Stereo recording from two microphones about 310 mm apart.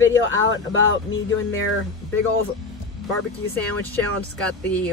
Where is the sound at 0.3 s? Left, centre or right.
Left.